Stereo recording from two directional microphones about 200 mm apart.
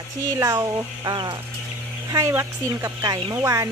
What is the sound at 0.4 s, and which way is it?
Speech, 15° right (ahead or behind).